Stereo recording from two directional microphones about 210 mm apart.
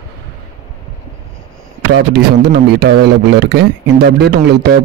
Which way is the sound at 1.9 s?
50° right (ahead or behind).